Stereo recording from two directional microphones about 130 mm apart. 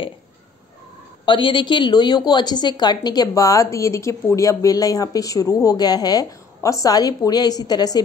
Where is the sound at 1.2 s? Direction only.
40° left (ahead or behind).